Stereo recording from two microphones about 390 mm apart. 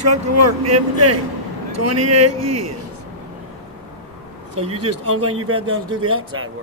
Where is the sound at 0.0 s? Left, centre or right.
Right.